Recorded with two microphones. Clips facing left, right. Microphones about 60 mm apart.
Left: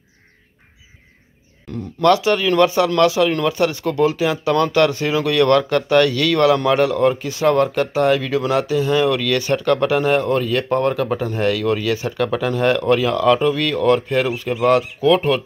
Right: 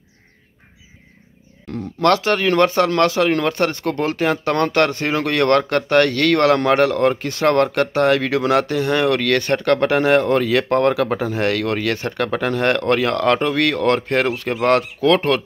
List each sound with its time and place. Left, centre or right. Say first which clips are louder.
1.7 s speech: left 1 dB; right